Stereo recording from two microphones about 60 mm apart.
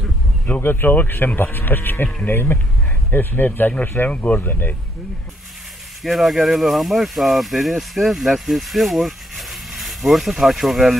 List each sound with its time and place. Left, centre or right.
0.5 s speech: left
4.4 s speech: left
6.0 s speech: centre